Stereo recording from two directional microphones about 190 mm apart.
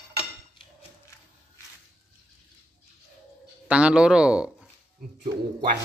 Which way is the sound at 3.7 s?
5° right (ahead or behind).